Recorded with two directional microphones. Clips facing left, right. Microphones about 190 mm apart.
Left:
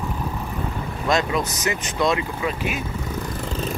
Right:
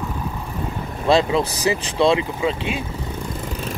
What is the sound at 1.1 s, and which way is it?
Speech, 30° right (ahead or behind).